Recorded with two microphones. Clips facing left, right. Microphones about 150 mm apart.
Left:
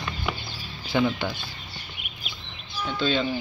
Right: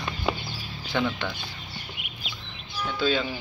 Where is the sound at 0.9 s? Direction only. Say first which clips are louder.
Left 3 dB; 10° left (ahead or behind).